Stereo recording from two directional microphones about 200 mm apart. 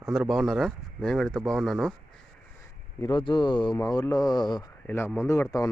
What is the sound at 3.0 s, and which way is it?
Speech, 20° left (ahead or behind).